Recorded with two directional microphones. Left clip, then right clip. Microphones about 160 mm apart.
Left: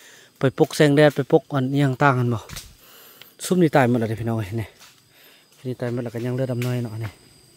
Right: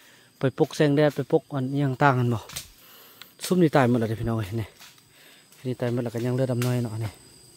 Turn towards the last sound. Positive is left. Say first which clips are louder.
# even
turn(degrees=5)  # may be behind; listen again after turning